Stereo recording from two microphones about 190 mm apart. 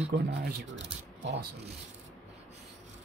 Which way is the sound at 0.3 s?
65° right (ahead or behind).